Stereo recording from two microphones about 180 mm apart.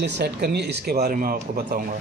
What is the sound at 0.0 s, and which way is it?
Speech, 70° right (ahead or behind).